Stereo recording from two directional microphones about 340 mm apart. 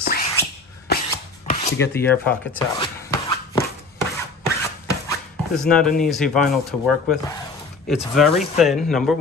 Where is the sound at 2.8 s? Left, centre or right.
Centre.